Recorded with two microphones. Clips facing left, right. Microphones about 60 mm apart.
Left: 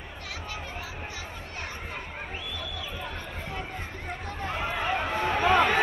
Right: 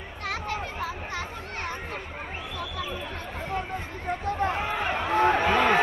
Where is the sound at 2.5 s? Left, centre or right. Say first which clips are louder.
Right 4 dB; right.